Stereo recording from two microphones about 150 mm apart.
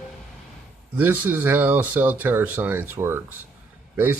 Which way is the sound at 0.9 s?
10° right (ahead or behind).